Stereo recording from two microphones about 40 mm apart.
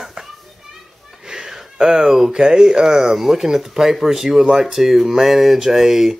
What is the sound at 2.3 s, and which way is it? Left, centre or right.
Speech, centre.